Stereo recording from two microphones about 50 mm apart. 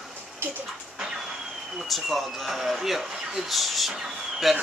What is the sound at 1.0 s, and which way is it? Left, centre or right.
Vehicle, centre.